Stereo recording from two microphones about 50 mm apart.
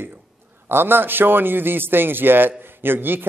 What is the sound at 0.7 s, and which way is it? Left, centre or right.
Speech, right.